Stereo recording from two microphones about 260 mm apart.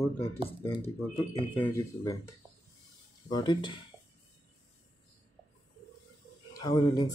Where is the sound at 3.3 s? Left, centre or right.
Centre.